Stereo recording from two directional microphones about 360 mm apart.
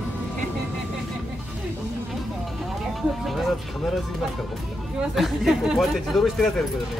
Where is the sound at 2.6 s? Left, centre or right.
Centre.